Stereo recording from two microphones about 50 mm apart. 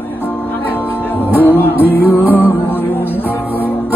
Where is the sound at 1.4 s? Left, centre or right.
Left.